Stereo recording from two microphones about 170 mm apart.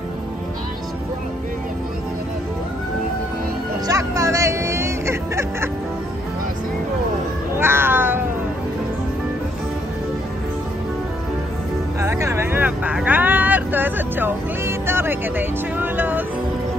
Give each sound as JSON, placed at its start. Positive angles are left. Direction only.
{"t": 3.8, "sound": "music", "side_deg": -20}
{"t": 7.5, "sound": "cat", "side_deg": -15}
{"t": 12.0, "sound": "vehicle", "side_deg": -15}